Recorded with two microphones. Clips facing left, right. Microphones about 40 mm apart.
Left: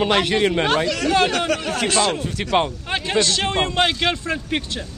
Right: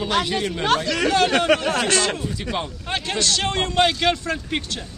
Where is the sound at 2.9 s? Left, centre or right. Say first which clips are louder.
Even; centre.